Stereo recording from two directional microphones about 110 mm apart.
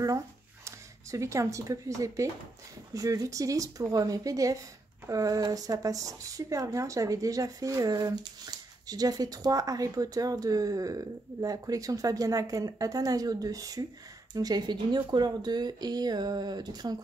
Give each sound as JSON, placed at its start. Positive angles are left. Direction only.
{"t": 0.7, "sound": "speech", "side_deg": -25}